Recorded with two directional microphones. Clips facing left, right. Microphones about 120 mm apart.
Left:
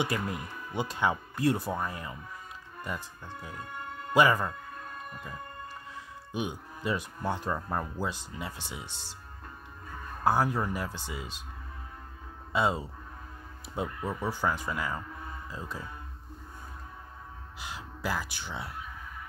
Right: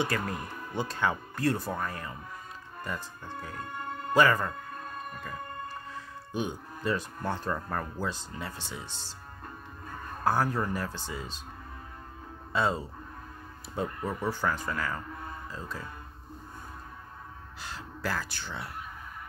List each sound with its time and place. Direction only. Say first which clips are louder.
0.0 s speech: right 1 dB; 15° left (ahead or behind)
6.3 s speech: right 1 dB; 10° left (ahead or behind)
10.2 s speech: left 1 dB; 15° left (ahead or behind)
12.5 s speech: even; 10° left (ahead or behind)
17.6 s speech: even; 10° left (ahead or behind)